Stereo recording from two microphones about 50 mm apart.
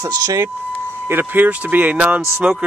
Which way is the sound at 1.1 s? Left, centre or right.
Right.